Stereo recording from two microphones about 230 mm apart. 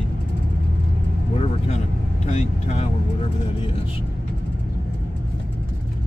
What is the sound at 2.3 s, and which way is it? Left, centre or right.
Speech, left.